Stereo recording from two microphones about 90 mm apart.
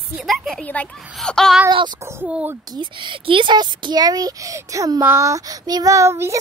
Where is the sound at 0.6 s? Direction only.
15° left (ahead or behind).